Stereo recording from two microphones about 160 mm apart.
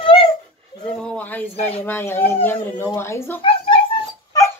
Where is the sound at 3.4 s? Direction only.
30° left (ahead or behind).